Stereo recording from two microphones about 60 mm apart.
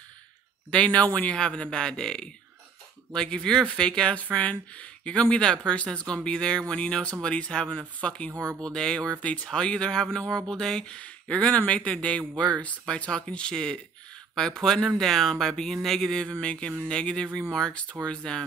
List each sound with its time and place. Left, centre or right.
0.7 s speech: centre
8.3 s speech: right
8.5 s speech: centre
16.2 s speech: centre